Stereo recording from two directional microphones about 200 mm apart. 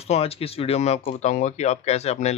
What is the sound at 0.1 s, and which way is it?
Speech, 30° left (ahead or behind).